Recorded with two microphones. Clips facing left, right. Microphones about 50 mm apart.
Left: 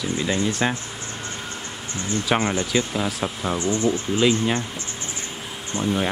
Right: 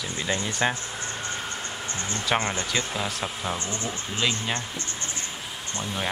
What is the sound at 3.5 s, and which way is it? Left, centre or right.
Speech, left.